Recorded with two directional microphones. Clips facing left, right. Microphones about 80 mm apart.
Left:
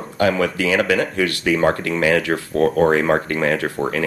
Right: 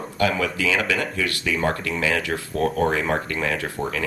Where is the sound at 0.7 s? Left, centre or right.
Left.